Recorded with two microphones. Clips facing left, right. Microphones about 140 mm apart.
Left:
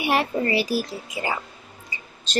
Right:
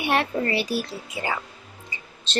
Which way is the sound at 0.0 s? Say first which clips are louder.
Left 1 dB; 5° left (ahead or behind).